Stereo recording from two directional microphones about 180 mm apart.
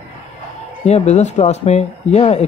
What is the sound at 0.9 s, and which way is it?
A man's voice, 40° left (ahead or behind).